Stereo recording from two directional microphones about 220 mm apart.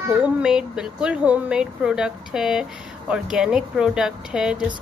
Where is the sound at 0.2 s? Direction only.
5° right (ahead or behind).